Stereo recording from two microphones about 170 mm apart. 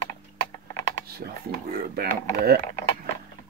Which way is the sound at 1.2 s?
55° right (ahead or behind).